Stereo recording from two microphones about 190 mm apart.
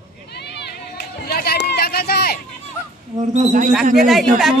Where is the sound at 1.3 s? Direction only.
55° left (ahead or behind).